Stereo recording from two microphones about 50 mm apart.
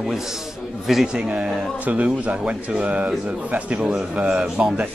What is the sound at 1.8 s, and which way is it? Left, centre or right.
Speech, right.